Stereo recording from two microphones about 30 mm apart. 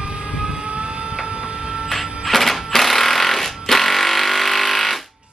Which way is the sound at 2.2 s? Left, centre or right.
Centre.